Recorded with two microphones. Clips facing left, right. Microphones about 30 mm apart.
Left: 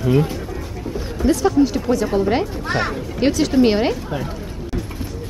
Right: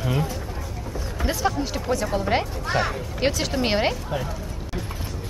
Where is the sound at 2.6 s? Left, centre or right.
Centre.